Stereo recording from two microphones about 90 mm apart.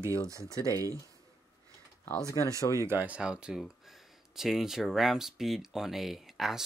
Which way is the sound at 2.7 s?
30° right (ahead or behind).